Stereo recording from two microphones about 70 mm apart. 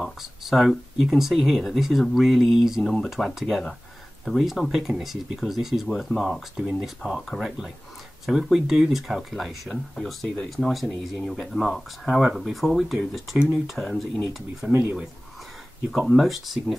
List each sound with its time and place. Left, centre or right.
0.0 s speech: centre
2.8 s speech: centre
3.3 s speech: centre
14.7 s speech: right
16.1 s speech: centre